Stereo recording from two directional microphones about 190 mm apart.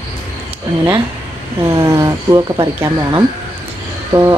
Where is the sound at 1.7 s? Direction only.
15° right (ahead or behind).